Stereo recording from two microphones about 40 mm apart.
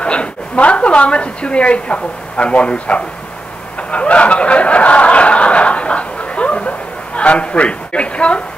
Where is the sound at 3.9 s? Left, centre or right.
Left.